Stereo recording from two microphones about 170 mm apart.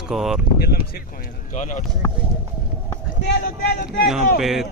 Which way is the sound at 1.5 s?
45° left (ahead or behind).